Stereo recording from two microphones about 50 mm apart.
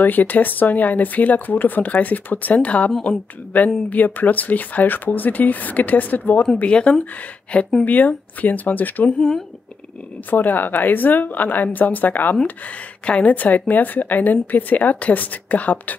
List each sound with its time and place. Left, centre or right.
0.0 s speech: left
6.6 s speech: left
10.3 s speech: left
13.0 s speech: left